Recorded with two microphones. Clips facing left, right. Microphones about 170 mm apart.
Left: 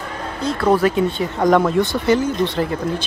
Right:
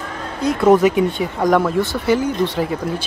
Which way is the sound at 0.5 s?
20° right (ahead or behind).